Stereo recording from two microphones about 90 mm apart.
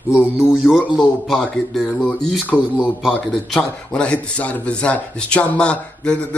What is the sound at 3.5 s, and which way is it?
Speech, 10° left (ahead or behind).